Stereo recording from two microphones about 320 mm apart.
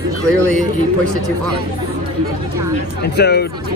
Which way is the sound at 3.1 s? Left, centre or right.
Left.